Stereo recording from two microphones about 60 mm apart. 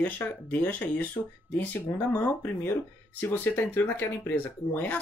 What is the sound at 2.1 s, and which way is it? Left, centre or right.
Speech, left.